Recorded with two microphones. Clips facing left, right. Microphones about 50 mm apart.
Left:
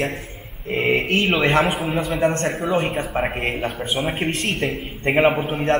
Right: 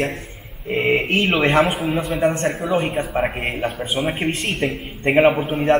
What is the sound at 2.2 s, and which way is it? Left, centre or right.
Speech, centre.